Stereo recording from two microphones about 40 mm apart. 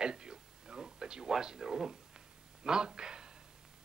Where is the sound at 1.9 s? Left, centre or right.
Centre.